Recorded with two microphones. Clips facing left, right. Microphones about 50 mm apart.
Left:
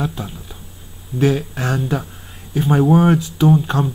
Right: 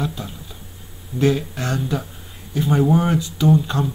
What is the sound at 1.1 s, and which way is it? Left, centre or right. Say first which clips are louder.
Speech: left 2 dB; left.